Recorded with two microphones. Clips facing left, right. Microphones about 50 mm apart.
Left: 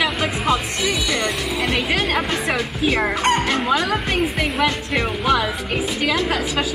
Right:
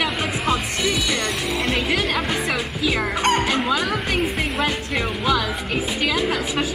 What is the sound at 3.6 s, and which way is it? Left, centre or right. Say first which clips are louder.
A woman's voice: left 2 dB; left.